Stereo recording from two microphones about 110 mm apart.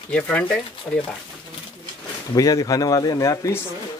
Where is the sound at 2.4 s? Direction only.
35° left (ahead or behind).